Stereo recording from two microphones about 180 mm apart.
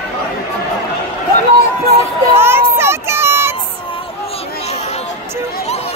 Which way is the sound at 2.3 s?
15° right (ahead or behind).